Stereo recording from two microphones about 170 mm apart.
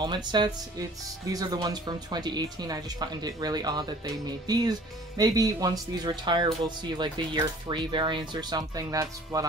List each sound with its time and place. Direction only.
0.0 s speech: 25° right (ahead or behind)